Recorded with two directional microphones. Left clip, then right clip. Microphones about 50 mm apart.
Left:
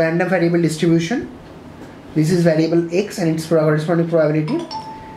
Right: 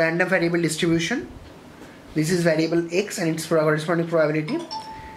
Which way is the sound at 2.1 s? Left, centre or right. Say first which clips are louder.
Left 5 dB; right.